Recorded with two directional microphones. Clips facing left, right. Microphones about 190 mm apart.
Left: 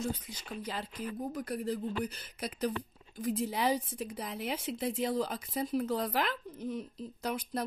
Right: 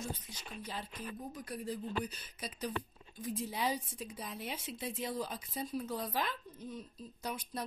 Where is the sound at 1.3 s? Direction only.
60° left (ahead or behind).